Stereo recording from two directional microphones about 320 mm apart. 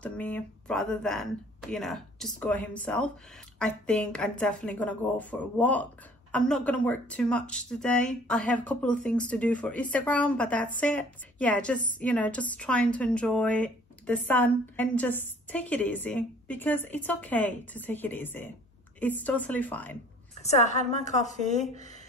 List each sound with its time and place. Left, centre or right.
0.0 s speech: centre
20.4 s a woman's voice: left